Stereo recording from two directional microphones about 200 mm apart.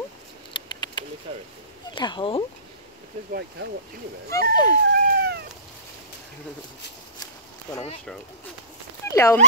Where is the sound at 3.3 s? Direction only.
55° right (ahead or behind).